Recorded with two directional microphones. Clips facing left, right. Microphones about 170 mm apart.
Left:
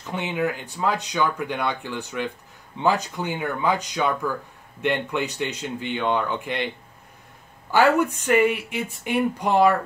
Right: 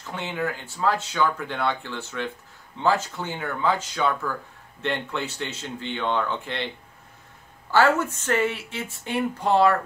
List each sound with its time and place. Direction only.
0.0 s speech: 15° left (ahead or behind)
7.7 s speech: 15° left (ahead or behind)